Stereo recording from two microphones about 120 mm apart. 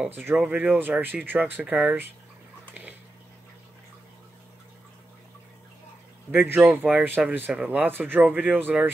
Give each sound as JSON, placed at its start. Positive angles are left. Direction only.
{"t": 0.0, "sound": "speech", "side_deg": -15}
{"t": 6.3, "sound": "speech", "side_deg": -15}